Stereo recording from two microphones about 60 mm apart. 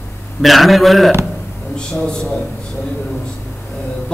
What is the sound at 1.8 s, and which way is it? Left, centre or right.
Speech, centre.